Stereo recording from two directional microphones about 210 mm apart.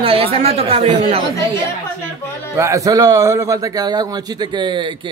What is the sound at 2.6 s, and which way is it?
A man's voice, 15° right (ahead or behind).